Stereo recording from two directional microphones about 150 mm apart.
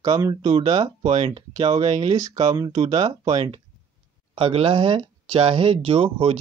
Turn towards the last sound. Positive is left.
turn(degrees=-40)  # may be behind; listen again after turning